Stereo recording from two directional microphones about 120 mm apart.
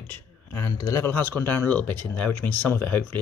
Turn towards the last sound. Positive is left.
turn(degrees=15)  # may be behind; listen again after turning